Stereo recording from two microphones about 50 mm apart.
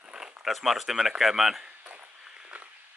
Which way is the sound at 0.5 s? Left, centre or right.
Centre.